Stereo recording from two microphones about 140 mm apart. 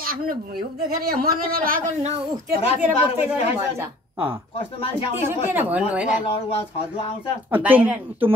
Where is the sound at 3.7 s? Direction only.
15° right (ahead or behind).